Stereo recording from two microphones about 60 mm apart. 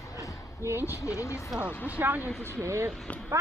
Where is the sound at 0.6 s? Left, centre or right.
Right.